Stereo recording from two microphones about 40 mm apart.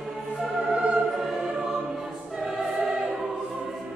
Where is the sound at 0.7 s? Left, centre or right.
Right.